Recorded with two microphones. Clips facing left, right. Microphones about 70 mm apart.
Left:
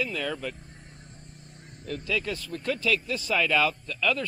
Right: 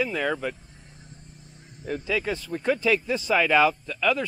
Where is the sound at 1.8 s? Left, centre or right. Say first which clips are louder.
Right 3 dB; centre.